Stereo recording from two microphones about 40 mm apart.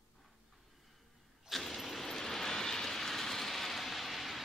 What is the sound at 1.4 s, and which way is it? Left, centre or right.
Vehicle, centre.